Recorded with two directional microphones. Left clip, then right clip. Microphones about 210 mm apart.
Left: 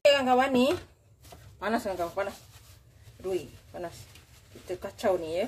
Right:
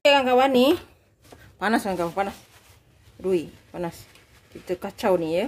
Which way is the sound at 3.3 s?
55° right (ahead or behind).